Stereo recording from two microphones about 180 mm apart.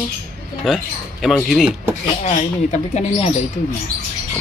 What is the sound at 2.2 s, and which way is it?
Speech, 40° left (ahead or behind).